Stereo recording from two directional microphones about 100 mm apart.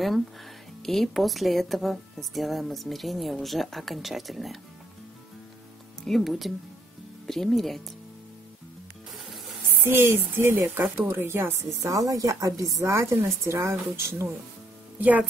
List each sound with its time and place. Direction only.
0.8 s speech: centre (ahead or behind)
6.0 s speech: centre (ahead or behind)
9.8 s speech: 25° right (ahead or behind)
11.8 s speech: 35° right (ahead or behind)
15.0 s speech: 15° right (ahead or behind)